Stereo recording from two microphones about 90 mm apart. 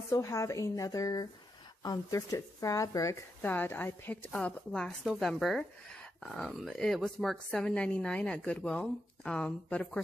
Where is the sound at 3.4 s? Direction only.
20° left (ahead or behind).